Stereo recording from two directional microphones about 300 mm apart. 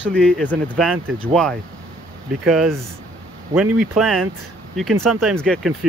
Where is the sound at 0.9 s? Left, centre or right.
Right.